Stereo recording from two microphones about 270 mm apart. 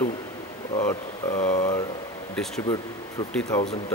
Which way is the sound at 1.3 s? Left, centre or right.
Left.